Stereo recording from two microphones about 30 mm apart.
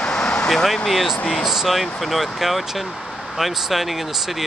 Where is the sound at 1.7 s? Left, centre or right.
Centre.